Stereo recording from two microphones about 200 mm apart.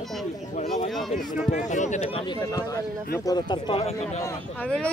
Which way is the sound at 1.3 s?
40° left (ahead or behind).